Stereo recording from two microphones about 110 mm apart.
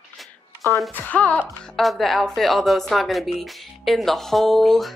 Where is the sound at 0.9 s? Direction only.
15° left (ahead or behind).